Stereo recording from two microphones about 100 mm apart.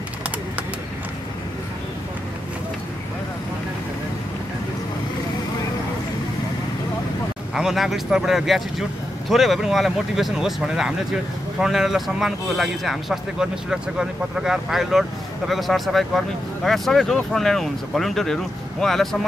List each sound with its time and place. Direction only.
7.5 s speech: 5° right (ahead or behind)